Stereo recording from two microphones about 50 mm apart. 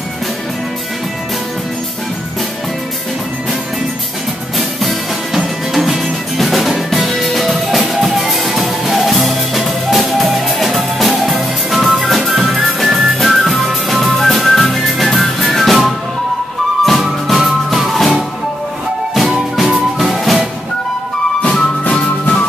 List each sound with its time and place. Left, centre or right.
4.6 s music: centre
21.4 s music: centre